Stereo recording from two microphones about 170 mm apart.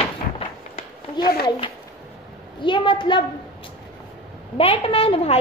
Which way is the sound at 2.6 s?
30° left (ahead or behind).